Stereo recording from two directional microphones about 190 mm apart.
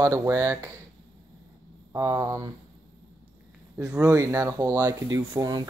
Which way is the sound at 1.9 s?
15° right (ahead or behind).